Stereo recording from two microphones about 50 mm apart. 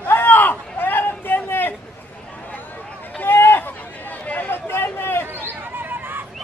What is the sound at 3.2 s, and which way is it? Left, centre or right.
Chatter, left.